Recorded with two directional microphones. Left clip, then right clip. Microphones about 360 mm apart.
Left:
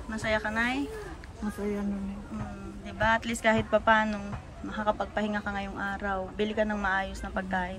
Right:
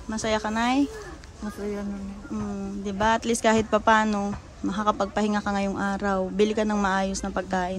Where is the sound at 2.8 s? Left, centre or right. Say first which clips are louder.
Right 3 dB; centre.